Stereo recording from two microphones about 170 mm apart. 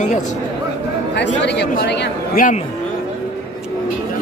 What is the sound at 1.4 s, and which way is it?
Speech, 90° left.